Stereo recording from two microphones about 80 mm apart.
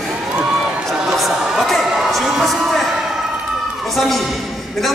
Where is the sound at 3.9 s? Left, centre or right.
Centre.